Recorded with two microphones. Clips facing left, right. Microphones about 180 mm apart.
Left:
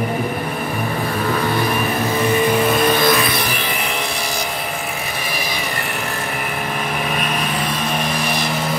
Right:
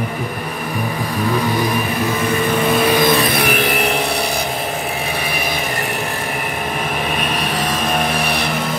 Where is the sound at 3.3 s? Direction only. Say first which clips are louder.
Right 6 dB; 60° right (ahead or behind).